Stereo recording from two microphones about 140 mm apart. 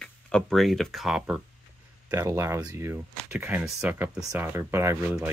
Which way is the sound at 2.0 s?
20° right (ahead or behind).